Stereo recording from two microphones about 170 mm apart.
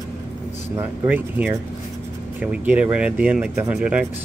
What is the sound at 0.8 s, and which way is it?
Speech, 10° right (ahead or behind).